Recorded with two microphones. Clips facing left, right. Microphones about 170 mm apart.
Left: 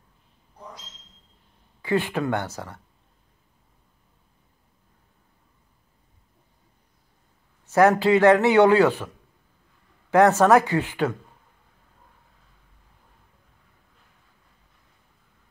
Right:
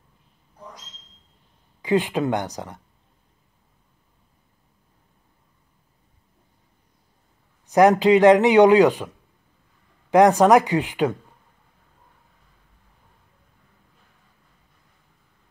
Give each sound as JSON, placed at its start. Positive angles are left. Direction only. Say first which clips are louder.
{"t": 1.8, "sound": "a man's voice", "louder": "right 3 dB", "side_deg": -15}
{"t": 7.6, "sound": "a man's voice", "louder": "right 3 dB", "side_deg": -15}
{"t": 10.1, "sound": "a man's voice", "louder": "right 2 dB", "side_deg": -15}